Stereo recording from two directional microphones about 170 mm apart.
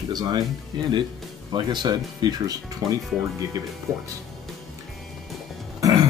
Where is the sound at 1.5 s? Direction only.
25° right (ahead or behind).